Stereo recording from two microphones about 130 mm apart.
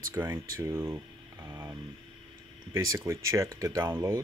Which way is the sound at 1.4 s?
20° right (ahead or behind).